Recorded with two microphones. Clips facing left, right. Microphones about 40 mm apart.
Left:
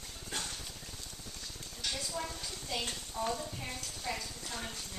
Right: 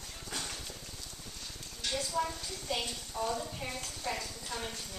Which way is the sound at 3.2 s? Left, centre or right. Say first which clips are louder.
Right 1 dB; right.